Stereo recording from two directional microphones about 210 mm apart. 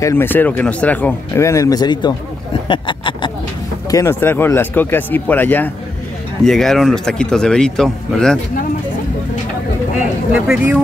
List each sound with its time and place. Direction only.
0.0 s speech: 10° left (ahead or behind)
3.9 s a man's voice: 10° left (ahead or behind)
10.3 s speech: 5° right (ahead or behind)